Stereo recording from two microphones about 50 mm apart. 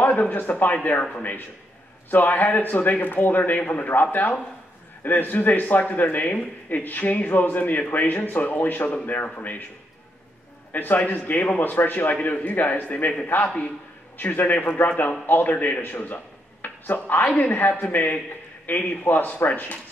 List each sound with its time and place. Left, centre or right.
0.0 s a man's voice: left
10.7 s speech: left
14.1 s speech: left